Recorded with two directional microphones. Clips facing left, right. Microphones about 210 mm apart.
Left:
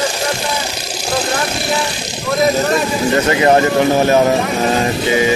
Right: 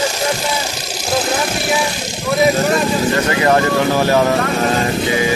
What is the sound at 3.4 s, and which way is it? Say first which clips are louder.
Speech: left 2 dB; 20° left (ahead or behind).